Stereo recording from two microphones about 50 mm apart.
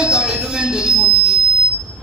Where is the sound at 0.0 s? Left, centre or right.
Centre.